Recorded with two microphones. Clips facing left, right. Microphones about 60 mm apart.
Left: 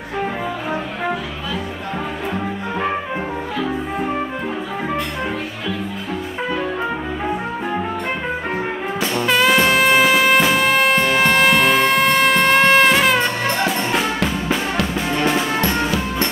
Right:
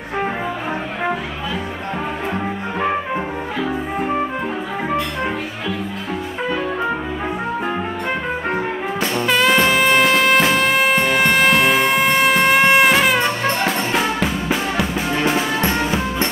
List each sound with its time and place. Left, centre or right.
9.2 s music: centre
15.6 s music: right